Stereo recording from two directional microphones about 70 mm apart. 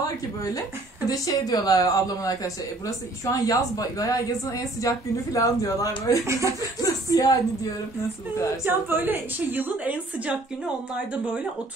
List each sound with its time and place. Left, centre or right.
1.0 s speech: left
6.2 s speech: right
6.8 s a sound: left
8.6 s a woman's voice: right